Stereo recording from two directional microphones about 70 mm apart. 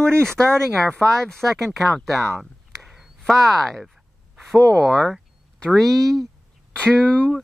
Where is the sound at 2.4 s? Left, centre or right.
Centre.